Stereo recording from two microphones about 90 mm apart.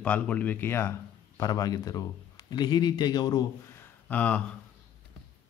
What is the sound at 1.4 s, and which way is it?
Speech, 45° left (ahead or behind).